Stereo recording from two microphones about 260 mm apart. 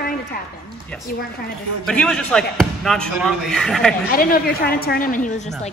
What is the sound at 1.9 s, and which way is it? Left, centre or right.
A man's voice, centre.